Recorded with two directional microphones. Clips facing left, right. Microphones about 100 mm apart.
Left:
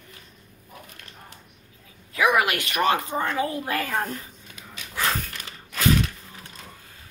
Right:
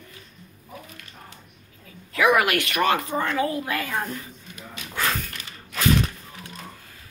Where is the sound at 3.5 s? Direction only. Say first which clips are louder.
Even; 30° left (ahead or behind).